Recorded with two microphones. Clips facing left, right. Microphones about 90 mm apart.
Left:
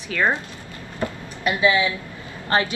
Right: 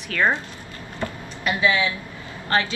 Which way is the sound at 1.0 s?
20° left (ahead or behind).